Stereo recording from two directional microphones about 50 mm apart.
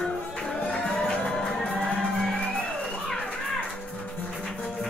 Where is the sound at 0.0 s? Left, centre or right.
Centre.